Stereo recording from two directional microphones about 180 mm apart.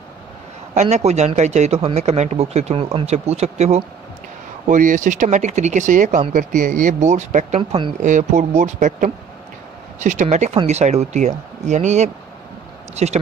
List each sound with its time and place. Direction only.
0.7 s speech: 40° right (ahead or behind)
8.0 s speech: 45° right (ahead or behind)